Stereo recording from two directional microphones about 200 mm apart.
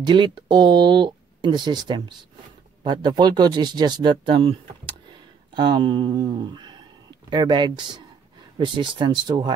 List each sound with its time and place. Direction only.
0.0 s speech: 25° right (ahead or behind)